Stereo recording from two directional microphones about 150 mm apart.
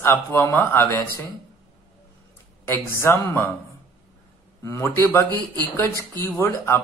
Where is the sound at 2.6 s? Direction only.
15° left (ahead or behind).